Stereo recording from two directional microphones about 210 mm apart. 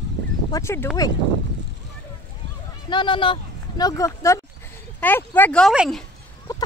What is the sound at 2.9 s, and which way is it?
Speech, 20° left (ahead or behind).